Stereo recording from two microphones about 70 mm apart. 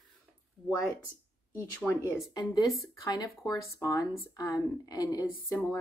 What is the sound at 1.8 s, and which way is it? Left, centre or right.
Speech, centre.